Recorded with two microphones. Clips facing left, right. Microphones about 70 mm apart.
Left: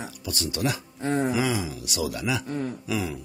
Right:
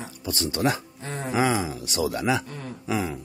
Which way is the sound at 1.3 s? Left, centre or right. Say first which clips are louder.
Right 2 dB; right.